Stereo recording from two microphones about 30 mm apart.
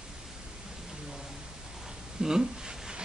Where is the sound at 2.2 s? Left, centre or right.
Centre.